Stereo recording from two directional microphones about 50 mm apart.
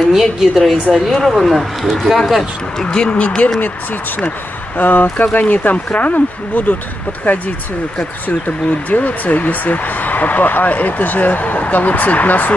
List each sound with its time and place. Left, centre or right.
0.1 s a woman's voice: centre
4.7 s speech: left